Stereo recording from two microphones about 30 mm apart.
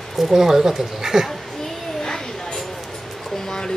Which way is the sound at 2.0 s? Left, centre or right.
Left.